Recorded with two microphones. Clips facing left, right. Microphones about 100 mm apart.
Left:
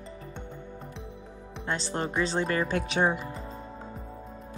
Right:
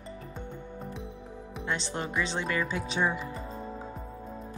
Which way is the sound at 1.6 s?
40° left (ahead or behind).